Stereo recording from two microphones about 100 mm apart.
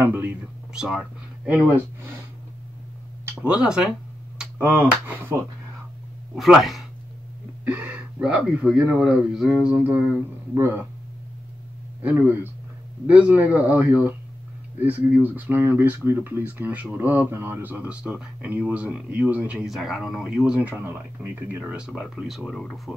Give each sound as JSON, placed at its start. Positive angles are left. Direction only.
{"t": 0.0, "sound": "speech", "side_deg": -20}
{"t": 0.7, "sound": "speech", "side_deg": -5}
{"t": 3.3, "sound": "speech", "side_deg": -10}
{"t": 4.6, "sound": "speech", "side_deg": -20}
{"t": 6.3, "sound": "speech", "side_deg": 0}
{"t": 7.6, "sound": "speech", "side_deg": -15}
{"t": 12.0, "sound": "speech", "side_deg": -15}
{"t": 19.7, "sound": "speech", "side_deg": -5}